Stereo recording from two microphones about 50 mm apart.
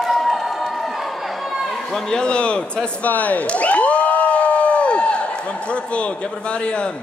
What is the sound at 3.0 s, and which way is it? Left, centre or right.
Crowd, left.